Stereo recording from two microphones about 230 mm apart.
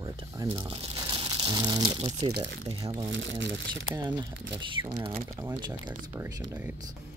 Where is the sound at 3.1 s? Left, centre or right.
Right.